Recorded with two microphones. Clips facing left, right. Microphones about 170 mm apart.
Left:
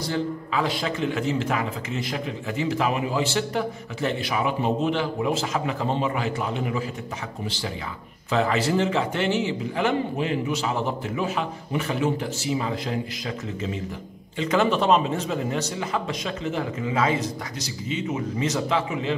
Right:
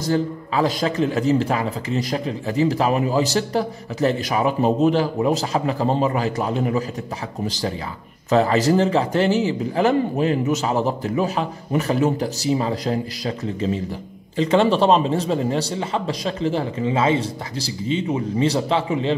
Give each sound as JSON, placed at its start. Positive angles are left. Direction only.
{"t": 0.0, "sound": "a man's voice", "side_deg": -40}